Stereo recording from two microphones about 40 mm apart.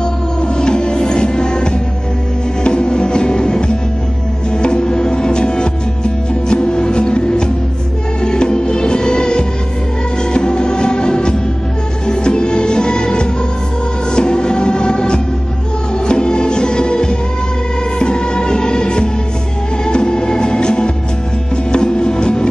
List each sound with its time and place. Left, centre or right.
0.4 s music: left